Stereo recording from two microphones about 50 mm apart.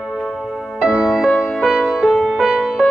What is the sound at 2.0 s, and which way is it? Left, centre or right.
Music, centre.